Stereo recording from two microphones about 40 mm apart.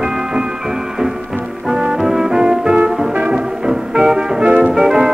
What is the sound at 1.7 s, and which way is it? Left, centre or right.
Music, centre.